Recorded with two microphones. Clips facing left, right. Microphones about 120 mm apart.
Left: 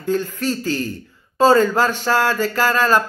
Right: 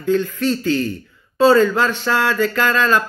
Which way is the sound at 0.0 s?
40° left (ahead or behind).